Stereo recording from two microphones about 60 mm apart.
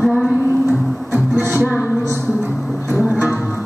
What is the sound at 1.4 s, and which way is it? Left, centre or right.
Music, right.